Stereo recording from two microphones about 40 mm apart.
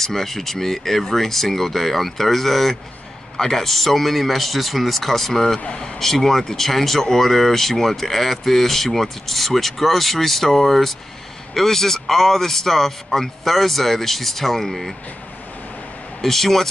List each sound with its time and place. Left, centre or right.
0.0 s a man's voice: centre
16.2 s speech: centre